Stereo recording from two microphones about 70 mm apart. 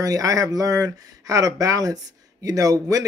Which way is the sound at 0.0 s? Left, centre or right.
Right.